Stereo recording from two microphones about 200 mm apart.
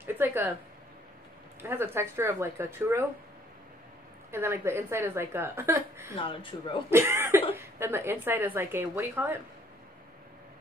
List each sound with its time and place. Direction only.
0.0 s a sound: 10° right (ahead or behind)
1.6 s a woman's voice: 10° right (ahead or behind)
4.3 s a woman's voice: 10° right (ahead or behind)
6.1 s speech: 25° left (ahead or behind)
6.9 s a woman's voice: 10° right (ahead or behind)